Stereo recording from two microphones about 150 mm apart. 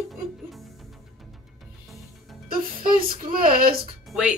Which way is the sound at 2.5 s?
75° right (ahead or behind).